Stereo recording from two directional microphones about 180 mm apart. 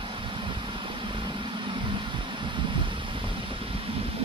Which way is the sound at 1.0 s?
25° right (ahead or behind).